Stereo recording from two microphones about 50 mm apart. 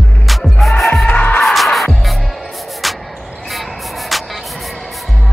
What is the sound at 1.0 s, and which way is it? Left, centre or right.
Music, left.